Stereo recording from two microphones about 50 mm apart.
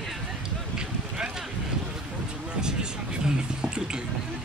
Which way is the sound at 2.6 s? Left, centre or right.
Centre.